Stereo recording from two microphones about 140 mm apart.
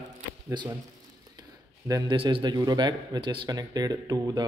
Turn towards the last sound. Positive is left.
turn(degrees=-25)  # may be behind; listen again after turning